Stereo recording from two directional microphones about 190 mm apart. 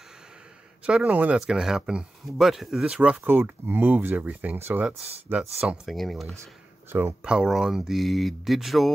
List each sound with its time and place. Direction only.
0.8 s speech: 5° right (ahead or behind)
4.9 s speech: 35° right (ahead or behind)
5.6 s speech: centre (ahead or behind)
6.9 s speech: 10° right (ahead or behind)